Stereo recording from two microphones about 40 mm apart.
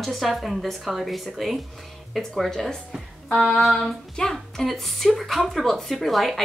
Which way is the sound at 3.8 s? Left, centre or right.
Centre.